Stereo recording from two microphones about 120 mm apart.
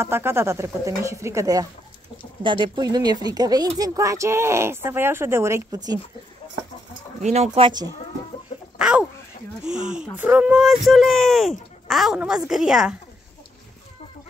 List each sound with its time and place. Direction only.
0.0 s speech: 20° right (ahead or behind)
2.4 s speech: 40° right (ahead or behind); by 5.8 s 25° right (ahead or behind)
7.2 s speech: 65° right (ahead or behind)
7.6 s speech: 35° right (ahead or behind)
8.7 s a sound: 5° right (ahead or behind)
9.7 s speech: 5° right (ahead or behind)